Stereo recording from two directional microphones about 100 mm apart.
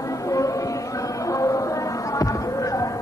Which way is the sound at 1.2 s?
35° left (ahead or behind).